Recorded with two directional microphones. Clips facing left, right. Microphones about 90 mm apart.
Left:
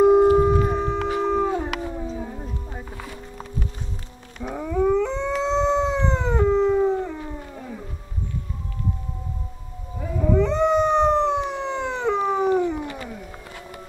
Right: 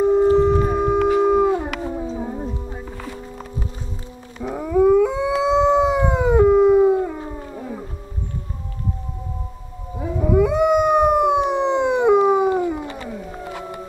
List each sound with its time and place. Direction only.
0.0 s howl: 15° left (ahead or behind)
0.6 s howl: 10° right (ahead or behind)
4.6 s howl: 5° right (ahead or behind)
7.5 s a sound: 20° right (ahead or behind)
9.9 s howl: 15° right (ahead or behind)
12.8 s a sound: 25° right (ahead or behind)